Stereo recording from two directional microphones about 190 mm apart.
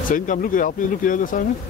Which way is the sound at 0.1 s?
45° left (ahead or behind).